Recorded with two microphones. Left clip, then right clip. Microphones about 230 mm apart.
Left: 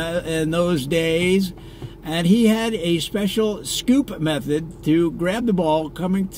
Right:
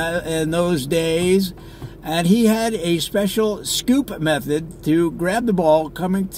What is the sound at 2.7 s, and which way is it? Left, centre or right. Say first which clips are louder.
Speech: right 1 dB; left.